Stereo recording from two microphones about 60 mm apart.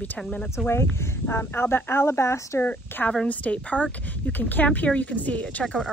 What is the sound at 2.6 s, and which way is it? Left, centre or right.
A woman's voice, left.